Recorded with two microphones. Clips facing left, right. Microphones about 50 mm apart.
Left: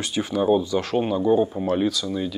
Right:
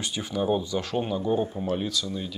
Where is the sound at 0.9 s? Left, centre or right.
Centre.